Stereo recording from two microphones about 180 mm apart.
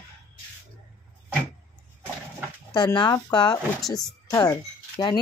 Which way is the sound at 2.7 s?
25° left (ahead or behind).